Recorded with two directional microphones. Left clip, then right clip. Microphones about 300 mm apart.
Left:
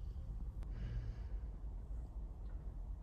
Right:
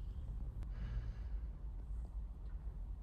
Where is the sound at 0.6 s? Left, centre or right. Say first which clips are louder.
Left 2 dB; centre.